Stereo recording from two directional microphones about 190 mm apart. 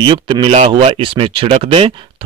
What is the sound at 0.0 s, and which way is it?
Speech, 25° right (ahead or behind).